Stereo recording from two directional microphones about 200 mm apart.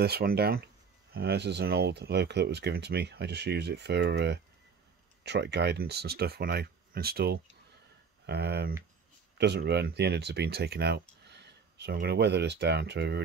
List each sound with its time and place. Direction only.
0.0 s speech: 50° right (ahead or behind)